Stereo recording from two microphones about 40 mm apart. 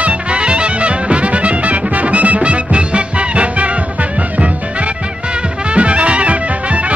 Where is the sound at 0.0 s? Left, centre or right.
Right.